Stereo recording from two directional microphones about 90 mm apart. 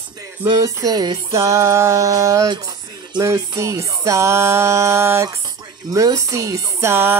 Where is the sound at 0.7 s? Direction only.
40° right (ahead or behind).